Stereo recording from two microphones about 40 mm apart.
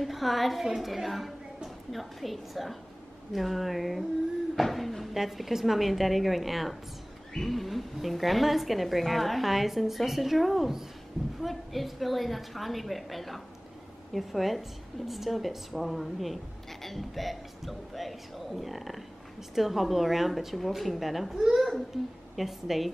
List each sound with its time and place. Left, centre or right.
0.0 s a woman's voice: centre